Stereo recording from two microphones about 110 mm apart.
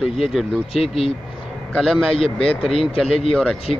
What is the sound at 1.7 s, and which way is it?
Speech, 5° left (ahead or behind).